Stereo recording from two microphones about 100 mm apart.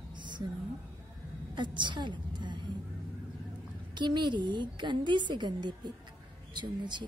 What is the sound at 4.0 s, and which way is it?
A woman's voice, 50° right (ahead or behind).